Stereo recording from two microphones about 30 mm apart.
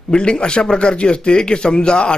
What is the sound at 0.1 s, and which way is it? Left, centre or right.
A man's voice, left.